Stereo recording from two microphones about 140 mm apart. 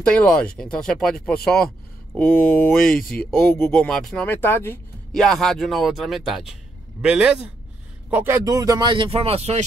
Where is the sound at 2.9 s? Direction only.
90° left.